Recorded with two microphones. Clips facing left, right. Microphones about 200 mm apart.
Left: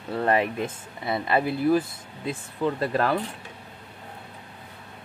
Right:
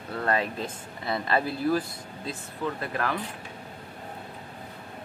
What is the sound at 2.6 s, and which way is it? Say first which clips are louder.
Speech: left 6 dB; 30° left (ahead or behind).